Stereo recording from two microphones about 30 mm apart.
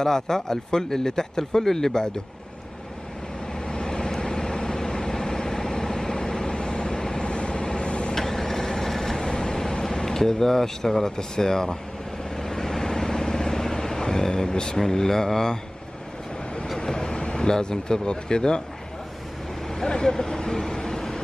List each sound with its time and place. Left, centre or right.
0.0 s speech: centre
3.5 s vehicle: left
8.1 s vehicle: centre
9.2 s air conditioning: left
12.4 s vehicle: centre
14.8 s speech: centre
16.8 s speech: left
19.7 s vehicle: left